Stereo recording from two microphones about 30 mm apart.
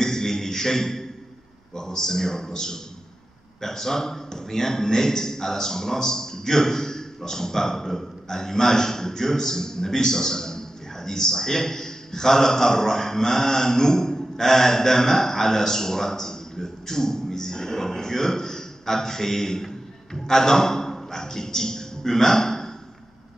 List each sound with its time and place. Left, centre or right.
0.0 s beatboxing: centre
1.8 s a man's voice: left